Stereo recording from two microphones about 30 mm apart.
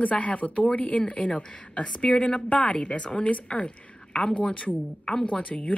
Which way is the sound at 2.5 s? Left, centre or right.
Left.